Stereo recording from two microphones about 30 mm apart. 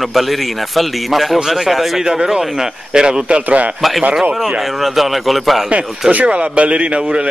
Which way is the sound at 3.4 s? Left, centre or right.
Right.